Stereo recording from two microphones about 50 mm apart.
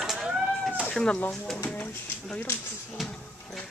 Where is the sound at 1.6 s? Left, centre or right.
Left.